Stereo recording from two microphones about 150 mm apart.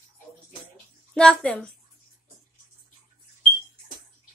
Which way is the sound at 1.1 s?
5° left (ahead or behind).